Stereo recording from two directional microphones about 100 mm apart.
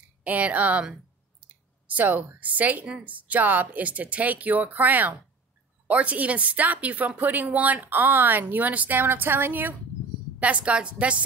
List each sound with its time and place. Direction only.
0.2 s a woman's voice: 15° right (ahead or behind)